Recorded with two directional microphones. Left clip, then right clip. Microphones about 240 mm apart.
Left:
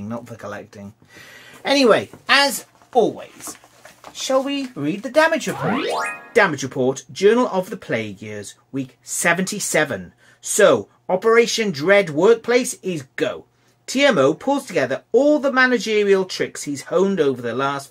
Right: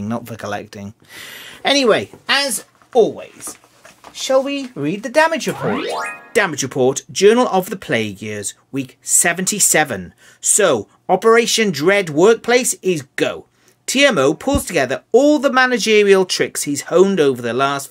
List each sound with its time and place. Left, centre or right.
0.0 s speech: right
4.3 s speech: right
5.6 s speech: centre
6.3 s speech: right